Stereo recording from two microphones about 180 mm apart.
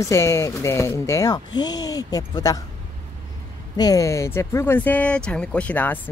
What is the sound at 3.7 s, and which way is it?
Speech, 20° left (ahead or behind).